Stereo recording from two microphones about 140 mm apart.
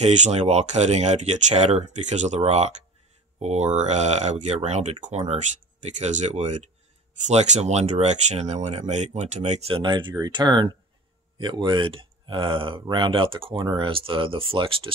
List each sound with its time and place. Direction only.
0.0 s speech: 55° right (ahead or behind)
9.8 s speech: 35° right (ahead or behind)